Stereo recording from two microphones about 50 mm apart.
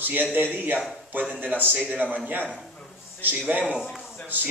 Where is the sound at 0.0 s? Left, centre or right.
Right.